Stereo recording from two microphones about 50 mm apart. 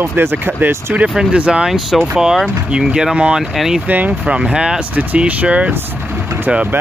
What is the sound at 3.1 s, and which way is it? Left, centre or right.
Speech, centre.